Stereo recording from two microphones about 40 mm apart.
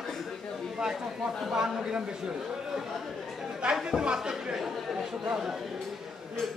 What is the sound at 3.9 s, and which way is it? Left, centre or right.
Speech, right.